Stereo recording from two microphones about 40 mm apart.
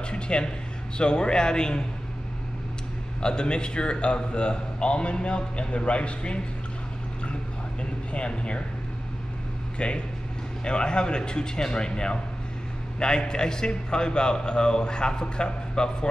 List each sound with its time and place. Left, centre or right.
0.1 s a man's voice: left
3.2 s a man's voice: left
8.1 s a man's voice: left
9.8 s a man's voice: left